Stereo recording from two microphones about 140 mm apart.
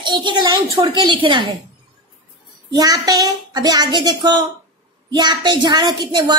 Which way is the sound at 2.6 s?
25° right (ahead or behind).